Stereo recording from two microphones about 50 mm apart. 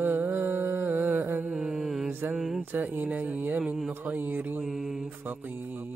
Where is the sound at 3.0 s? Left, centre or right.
Right.